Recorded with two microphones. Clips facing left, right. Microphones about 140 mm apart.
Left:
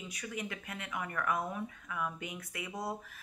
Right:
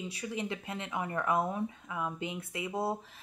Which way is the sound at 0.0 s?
30° right (ahead or behind).